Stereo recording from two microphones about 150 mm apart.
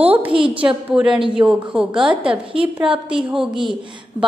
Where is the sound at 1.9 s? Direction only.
35° right (ahead or behind).